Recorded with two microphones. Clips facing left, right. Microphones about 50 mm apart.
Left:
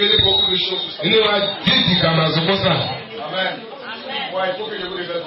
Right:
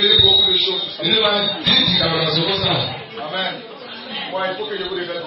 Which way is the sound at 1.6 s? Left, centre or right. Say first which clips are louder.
Left 1 dB; left.